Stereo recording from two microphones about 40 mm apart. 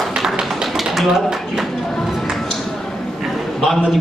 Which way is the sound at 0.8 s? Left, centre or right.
Centre.